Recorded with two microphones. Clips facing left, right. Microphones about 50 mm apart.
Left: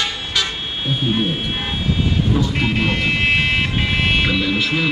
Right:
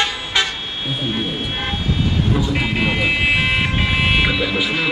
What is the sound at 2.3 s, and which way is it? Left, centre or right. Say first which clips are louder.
Speech: left 1 dB; centre.